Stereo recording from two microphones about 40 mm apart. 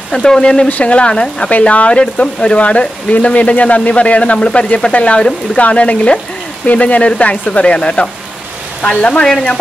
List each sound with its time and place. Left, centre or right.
0.1 s speech: centre
0.7 s speech: left
0.9 s speech: left
1.5 s speech: left
9.2 s speech: centre